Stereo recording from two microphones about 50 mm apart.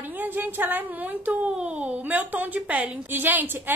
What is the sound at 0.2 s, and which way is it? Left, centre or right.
A woman's voice, right.